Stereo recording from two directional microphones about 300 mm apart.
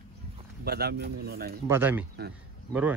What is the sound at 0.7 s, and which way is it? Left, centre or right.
Speech, right.